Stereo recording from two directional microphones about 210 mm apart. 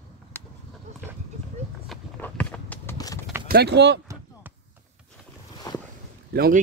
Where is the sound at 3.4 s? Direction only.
50° right (ahead or behind).